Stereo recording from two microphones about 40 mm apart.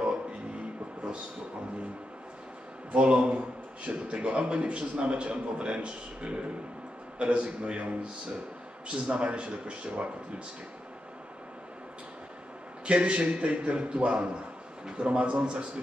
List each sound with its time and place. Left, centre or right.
0.0 s a sound: right
2.9 s a man's voice: right
8.8 s a man's voice: right
12.8 s a man's voice: right